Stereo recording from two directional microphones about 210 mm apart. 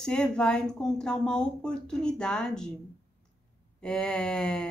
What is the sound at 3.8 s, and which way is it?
Speech, 5° left (ahead or behind).